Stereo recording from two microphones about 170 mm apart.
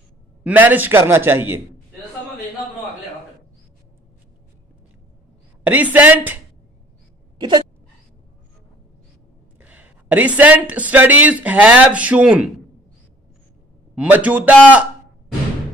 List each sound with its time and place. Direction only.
0.4 s speech: 10° right (ahead or behind)
5.6 s speech: 10° right (ahead or behind)
7.3 s sneeze: 25° right (ahead or behind)
9.6 s speech: 10° right (ahead or behind)
13.9 s speech: 10° right (ahead or behind)